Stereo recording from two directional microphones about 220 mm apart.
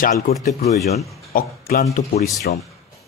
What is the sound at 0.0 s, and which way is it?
Speech, 30° left (ahead or behind).